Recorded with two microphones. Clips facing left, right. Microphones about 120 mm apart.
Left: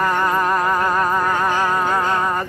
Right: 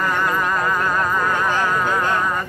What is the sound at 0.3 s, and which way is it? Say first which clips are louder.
Music: left 3 dB; 25° left (ahead or behind).